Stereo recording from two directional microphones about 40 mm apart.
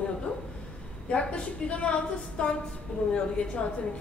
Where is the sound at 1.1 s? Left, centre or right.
Left.